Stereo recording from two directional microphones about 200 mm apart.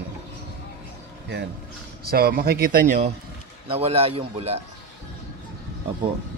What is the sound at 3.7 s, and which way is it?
Speech, 30° right (ahead or behind).